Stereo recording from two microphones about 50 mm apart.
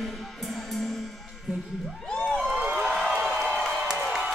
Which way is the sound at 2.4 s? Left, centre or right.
Centre.